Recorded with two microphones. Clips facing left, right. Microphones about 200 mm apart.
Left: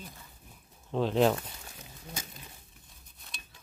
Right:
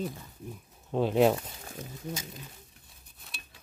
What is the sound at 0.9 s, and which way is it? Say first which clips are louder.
Speech: right 2 dB; 15° right (ahead or behind).